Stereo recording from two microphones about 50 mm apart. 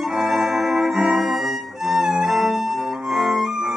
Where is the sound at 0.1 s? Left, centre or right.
Centre.